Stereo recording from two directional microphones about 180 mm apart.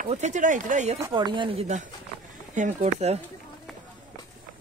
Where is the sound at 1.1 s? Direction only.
25° right (ahead or behind); by 2.9 s 45° right (ahead or behind).